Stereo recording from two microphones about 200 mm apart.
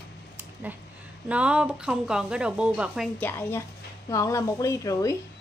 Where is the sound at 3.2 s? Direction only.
10° left (ahead or behind).